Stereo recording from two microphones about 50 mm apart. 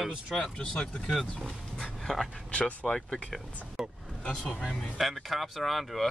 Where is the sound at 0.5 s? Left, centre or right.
Centre.